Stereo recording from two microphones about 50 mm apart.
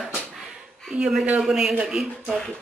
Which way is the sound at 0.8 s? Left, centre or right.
Centre.